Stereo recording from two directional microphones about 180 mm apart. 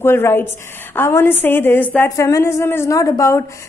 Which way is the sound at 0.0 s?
15° left (ahead or behind).